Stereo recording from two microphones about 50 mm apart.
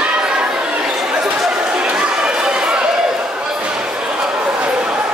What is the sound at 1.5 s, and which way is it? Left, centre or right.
Chatter, centre.